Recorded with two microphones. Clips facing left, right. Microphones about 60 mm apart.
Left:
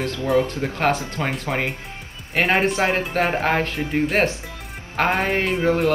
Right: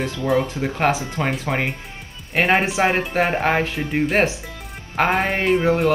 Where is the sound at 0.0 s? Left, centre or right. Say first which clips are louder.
Even; centre.